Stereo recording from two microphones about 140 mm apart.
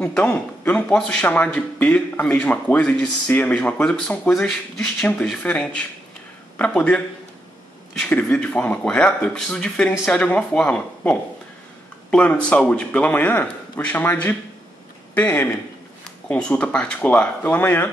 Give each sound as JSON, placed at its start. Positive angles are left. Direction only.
{"t": 0.0, "sound": "speech", "side_deg": 10}
{"t": 8.0, "sound": "speech", "side_deg": 10}